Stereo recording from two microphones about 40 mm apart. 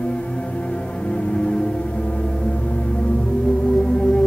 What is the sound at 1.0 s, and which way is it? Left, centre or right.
Music, left.